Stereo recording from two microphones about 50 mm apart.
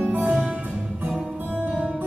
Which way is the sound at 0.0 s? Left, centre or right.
Right.